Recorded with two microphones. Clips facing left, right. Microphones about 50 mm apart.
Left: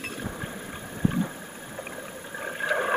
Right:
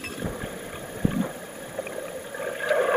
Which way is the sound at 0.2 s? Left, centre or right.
Centre.